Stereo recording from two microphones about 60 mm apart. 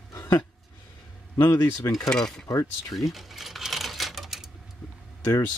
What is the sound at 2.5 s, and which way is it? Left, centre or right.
Speech, left.